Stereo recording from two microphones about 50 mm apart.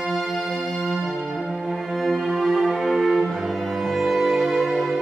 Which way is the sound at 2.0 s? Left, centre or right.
Centre.